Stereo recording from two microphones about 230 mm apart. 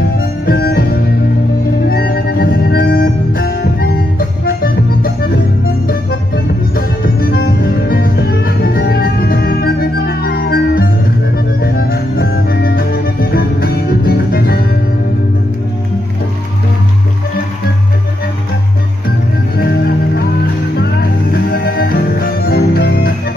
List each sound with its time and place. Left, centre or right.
0.5 s music: left
1.9 s music: left
7.2 s music: left
20.8 s music: left